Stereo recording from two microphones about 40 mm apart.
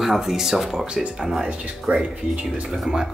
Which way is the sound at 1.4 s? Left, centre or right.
Right.